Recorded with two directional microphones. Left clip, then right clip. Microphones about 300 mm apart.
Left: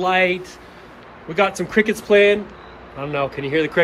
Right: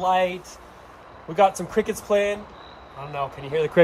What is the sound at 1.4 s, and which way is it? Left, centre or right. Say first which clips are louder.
Speech: left 2 dB; centre.